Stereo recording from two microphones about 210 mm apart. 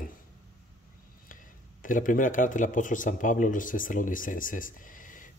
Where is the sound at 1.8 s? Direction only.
40° left (ahead or behind).